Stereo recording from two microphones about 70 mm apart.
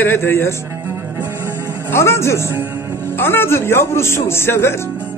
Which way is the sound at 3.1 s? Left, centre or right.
Left.